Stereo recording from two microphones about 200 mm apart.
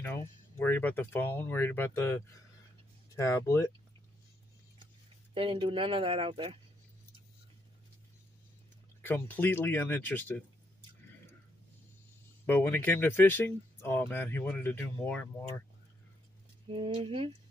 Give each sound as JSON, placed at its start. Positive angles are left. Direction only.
{"t": 0.0, "sound": "speech", "side_deg": 10}
{"t": 5.3, "sound": "speech", "side_deg": -25}
{"t": 9.0, "sound": "speech", "side_deg": 10}
{"t": 12.4, "sound": "speech", "side_deg": 10}
{"t": 16.6, "sound": "speech", "side_deg": -25}